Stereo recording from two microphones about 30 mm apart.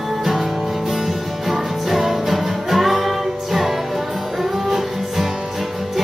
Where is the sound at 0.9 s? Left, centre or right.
Centre.